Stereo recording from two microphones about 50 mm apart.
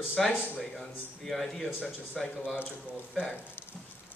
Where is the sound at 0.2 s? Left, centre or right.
Centre.